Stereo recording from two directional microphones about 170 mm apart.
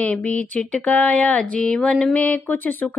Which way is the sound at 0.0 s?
10° left (ahead or behind).